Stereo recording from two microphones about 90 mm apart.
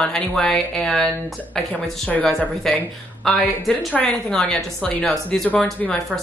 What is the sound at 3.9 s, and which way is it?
A woman's voice, 10° left (ahead or behind).